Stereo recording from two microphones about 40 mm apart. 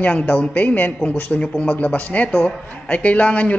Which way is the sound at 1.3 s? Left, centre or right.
Left.